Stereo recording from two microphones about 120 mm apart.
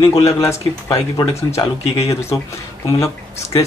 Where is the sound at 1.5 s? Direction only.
55° left (ahead or behind).